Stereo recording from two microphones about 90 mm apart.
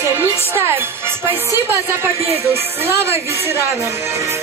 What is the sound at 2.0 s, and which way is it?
Speech, 30° right (ahead or behind).